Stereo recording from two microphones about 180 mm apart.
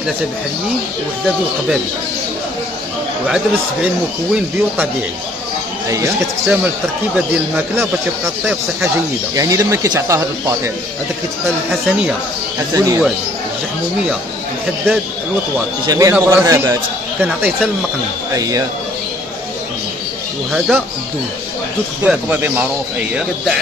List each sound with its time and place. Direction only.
3.8 s a man's voice: 5° right (ahead or behind)
5.9 s a man's voice: 15° right (ahead or behind)
9.3 s a man's voice: 20° right (ahead or behind)
12.7 s a man's voice: 15° right (ahead or behind)
15.9 s a man's voice: 15° right (ahead or behind)
18.3 s speech: 20° right (ahead or behind)
20.5 s speech: 5° right (ahead or behind)
22.0 s a man's voice: 10° right (ahead or behind)